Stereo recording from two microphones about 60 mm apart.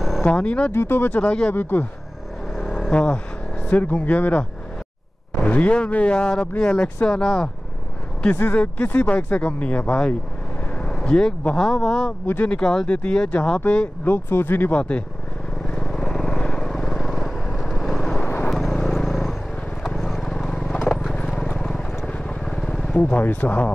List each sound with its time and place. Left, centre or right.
0.2 s speech: left
0.7 s speech: left
1.5 s speech: left
2.5 s vehicle: centre
2.9 s speech: centre
3.6 s speech: left
8.5 s speech: left
14.0 s speech: left
14.7 s speech: centre
15.8 s vehicle: centre
16.1 s vehicle: centre
18.2 s vehicle: left
18.5 s vehicle: centre
22.9 s speech: left